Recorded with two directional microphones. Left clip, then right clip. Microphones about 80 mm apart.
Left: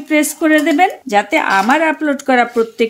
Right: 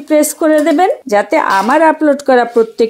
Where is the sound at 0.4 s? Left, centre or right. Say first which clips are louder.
Left 1 dB; right.